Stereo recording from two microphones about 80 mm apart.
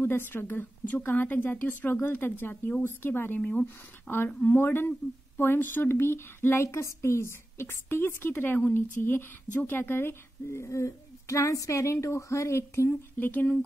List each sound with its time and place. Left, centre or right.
0.0 s a woman's voice: left
4.3 s speech: centre
4.6 s a woman's voice: left
13.2 s a woman's voice: left